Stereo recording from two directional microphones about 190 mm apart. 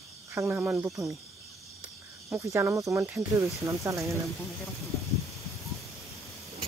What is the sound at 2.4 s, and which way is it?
Speech, 15° right (ahead or behind).